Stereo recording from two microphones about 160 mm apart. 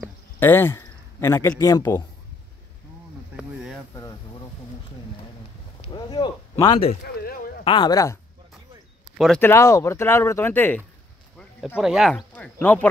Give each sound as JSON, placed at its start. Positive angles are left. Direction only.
{"t": 0.4, "sound": "speech", "side_deg": 15}
{"t": 3.9, "sound": "vehicle", "side_deg": 25}
{"t": 5.8, "sound": "a sound", "side_deg": 30}
{"t": 7.2, "sound": "a sound", "side_deg": 75}
{"t": 7.6, "sound": "speech", "side_deg": 30}
{"t": 9.4, "sound": "speech", "side_deg": 20}
{"t": 11.6, "sound": "speech", "side_deg": -5}
{"t": 12.4, "sound": "speech", "side_deg": 10}